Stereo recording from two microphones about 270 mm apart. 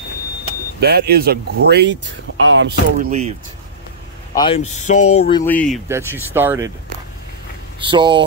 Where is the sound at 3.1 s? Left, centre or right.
Right.